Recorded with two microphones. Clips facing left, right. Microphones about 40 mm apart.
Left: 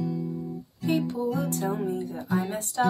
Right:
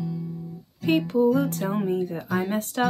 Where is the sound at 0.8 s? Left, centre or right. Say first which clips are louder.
Right 6 dB; right.